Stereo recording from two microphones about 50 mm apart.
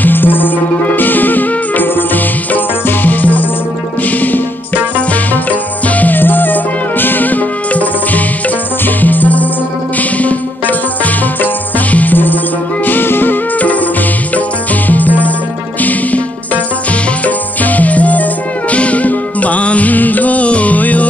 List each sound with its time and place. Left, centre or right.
0.0 s music: left
4.9 s music: left
11.9 s music: left
14.9 s music: left
17.6 s music: left